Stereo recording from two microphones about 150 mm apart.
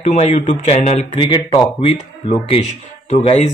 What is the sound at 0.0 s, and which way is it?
Speech, 50° left (ahead or behind).